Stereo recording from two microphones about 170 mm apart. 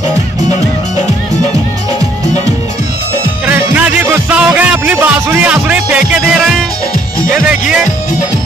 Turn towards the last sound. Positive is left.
turn(degrees=-5)  # may be behind; listen again after turning